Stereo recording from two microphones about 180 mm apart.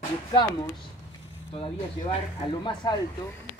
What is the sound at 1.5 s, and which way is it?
Speech, 30° left (ahead or behind).